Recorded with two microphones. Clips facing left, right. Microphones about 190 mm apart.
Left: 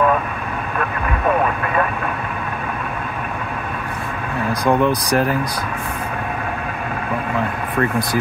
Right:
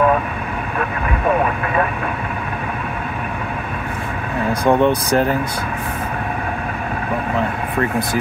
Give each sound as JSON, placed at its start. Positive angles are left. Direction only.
{"t": 4.5, "sound": "speech", "side_deg": -25}